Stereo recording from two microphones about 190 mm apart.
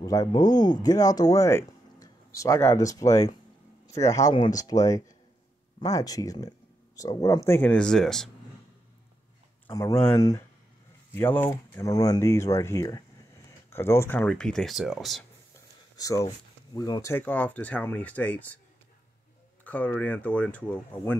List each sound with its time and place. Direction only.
0.0 s speech: 20° left (ahead or behind); by 8.3 s centre (ahead or behind)
9.7 s speech: 15° left (ahead or behind); by 15.2 s centre (ahead or behind)
16.0 s speech: 15° left (ahead or behind)
19.6 s speech: 10° left (ahead or behind)